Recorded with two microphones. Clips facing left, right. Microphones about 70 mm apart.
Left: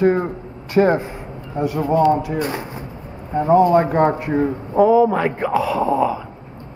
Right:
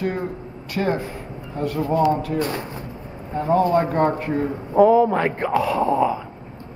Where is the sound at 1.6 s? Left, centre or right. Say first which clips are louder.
Left 3 dB; centre.